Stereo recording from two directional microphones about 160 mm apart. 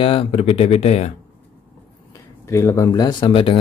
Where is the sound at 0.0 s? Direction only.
35° left (ahead or behind).